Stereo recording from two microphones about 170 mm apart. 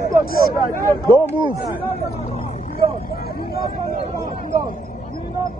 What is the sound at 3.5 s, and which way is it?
Speech, 65° left (ahead or behind).